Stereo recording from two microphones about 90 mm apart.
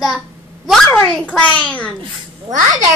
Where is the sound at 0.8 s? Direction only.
15° left (ahead or behind).